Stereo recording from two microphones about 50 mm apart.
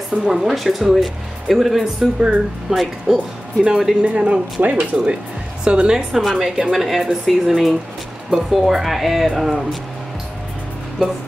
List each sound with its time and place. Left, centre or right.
0.1 s speech: centre
2.1 s speech: right
2.7 s a woman's voice: centre
4.0 s speech: right
5.6 s a woman's voice: centre